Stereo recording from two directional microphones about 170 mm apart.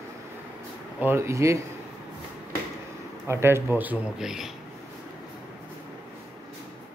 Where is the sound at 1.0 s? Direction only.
15° right (ahead or behind).